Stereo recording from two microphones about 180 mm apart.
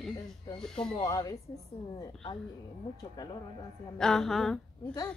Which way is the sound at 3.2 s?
20° left (ahead or behind).